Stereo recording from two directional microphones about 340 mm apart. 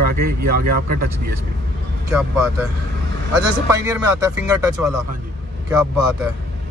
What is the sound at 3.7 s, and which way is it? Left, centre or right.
Speech, centre.